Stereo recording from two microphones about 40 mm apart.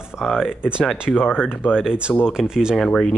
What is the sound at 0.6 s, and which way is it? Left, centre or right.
Speech, right.